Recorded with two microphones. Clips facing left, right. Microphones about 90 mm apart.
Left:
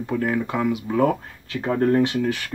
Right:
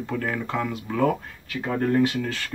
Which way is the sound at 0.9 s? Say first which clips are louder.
Even; 25° left (ahead or behind).